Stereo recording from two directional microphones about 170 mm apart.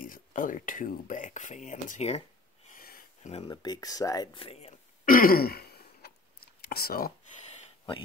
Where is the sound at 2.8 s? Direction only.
60° left (ahead or behind).